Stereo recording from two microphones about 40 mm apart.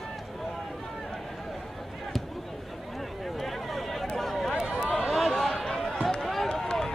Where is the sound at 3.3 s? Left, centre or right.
Centre.